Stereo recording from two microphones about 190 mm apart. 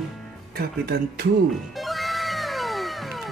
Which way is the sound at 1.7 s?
Centre (ahead or behind).